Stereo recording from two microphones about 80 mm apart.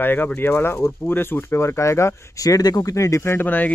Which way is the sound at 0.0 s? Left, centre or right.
Left.